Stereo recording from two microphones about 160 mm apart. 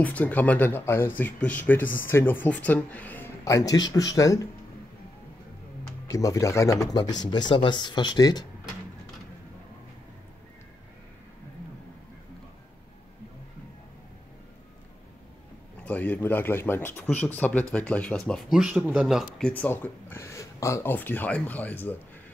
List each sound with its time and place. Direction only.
0.0 s speech: 10° left (ahead or behind)
6.0 s speech: 20° left (ahead or behind)
15.8 s speech: 10° left (ahead or behind)